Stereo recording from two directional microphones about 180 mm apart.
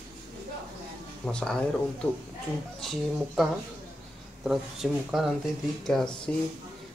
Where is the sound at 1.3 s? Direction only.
5° left (ahead or behind).